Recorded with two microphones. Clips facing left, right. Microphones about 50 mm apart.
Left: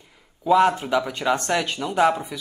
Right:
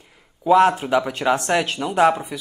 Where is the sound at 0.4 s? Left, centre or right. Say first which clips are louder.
Right 3 dB; centre.